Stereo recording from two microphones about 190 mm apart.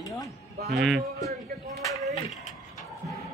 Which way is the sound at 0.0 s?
15° left (ahead or behind).